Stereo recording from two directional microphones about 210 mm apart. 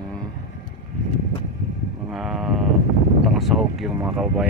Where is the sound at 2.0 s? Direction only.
Centre (ahead or behind).